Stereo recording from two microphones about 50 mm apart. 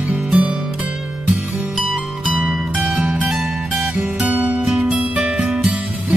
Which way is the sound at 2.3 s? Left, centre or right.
Right.